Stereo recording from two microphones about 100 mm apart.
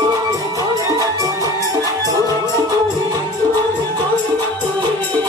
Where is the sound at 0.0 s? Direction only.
35° right (ahead or behind).